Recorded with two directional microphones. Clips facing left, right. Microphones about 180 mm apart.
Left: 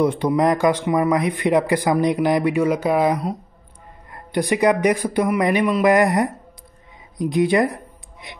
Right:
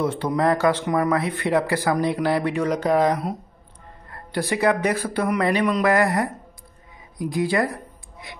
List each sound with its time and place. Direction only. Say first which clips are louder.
0.0 s speech: left 4 dB; 10° left (ahead or behind)